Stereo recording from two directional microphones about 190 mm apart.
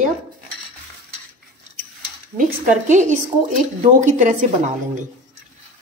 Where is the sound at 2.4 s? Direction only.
40° right (ahead or behind).